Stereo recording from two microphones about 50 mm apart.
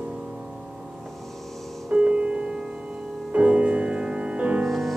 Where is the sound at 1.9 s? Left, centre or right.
Right.